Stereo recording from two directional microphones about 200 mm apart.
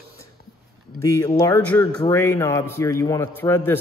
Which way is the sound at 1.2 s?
15° left (ahead or behind).